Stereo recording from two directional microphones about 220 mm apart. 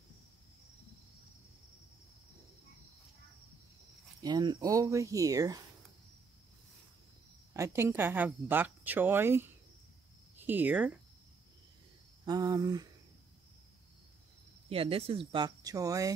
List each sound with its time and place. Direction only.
4.2 s speech: 20° right (ahead or behind)
7.5 s speech: 10° right (ahead or behind)
12.3 s speech: 15° right (ahead or behind)
14.7 s speech: 25° right (ahead or behind)